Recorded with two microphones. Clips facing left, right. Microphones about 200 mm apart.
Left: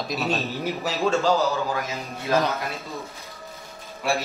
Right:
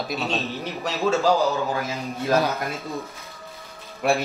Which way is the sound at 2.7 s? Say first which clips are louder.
Right 3 dB; 15° right (ahead or behind).